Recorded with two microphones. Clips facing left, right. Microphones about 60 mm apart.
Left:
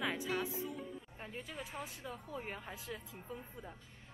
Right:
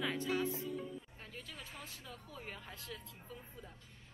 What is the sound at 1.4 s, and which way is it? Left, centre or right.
Speech, centre.